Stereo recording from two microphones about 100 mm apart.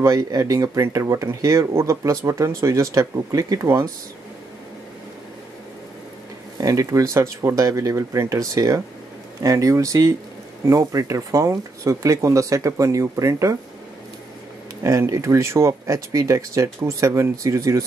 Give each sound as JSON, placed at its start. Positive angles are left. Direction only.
{"t": 0.0, "sound": "speech", "side_deg": -35}
{"t": 6.6, "sound": "speech", "side_deg": -35}
{"t": 14.8, "sound": "speech", "side_deg": -30}